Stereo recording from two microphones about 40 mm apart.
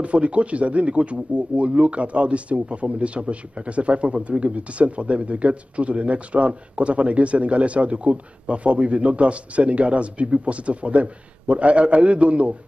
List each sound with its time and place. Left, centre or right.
0.0 s speech: right